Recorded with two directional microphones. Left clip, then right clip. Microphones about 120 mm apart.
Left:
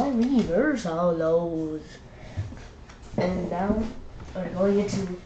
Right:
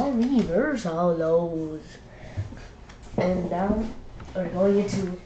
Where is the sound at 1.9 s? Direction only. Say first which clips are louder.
Right 1 dB; 25° right (ahead or behind).